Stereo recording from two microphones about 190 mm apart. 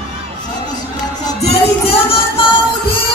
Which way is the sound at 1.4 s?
30° left (ahead or behind).